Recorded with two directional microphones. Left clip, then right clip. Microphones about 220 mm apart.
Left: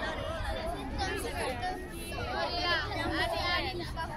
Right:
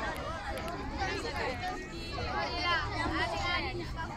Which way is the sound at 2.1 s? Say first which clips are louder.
Left 1 dB; 45° left (ahead or behind).